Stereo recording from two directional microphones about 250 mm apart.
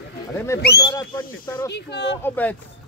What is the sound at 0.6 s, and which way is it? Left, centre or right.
Speech, left.